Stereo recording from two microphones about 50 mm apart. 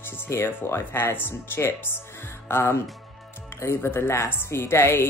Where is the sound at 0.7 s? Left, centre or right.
Left.